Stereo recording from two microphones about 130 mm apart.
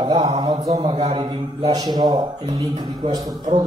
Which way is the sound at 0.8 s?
40° right (ahead or behind).